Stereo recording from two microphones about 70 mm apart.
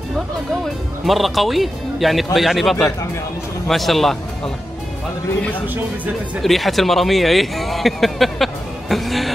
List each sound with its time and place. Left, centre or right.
1.0 s a man's voice: centre
6.4 s speech: centre